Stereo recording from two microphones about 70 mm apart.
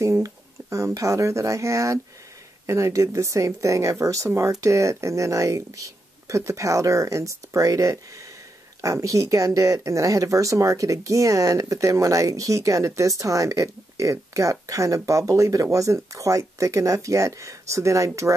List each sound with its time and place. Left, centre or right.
0.2 s speech: right